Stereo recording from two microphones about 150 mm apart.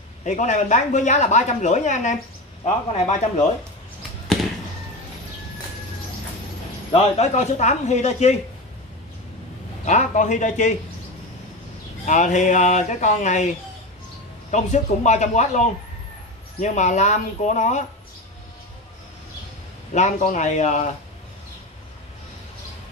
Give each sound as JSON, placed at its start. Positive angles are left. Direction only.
{"t": 0.2, "sound": "speech", "side_deg": 55}
{"t": 6.9, "sound": "speech", "side_deg": 50}
{"t": 9.8, "sound": "speech", "side_deg": 55}
{"t": 12.1, "sound": "speech", "side_deg": 55}
{"t": 14.5, "sound": "speech", "side_deg": 50}
{"t": 19.9, "sound": "speech", "side_deg": 55}